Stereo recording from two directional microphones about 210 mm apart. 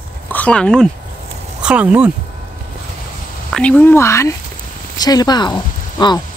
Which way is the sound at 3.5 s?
5° left (ahead or behind).